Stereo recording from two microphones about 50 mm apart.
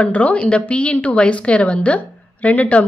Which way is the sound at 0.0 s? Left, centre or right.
Left.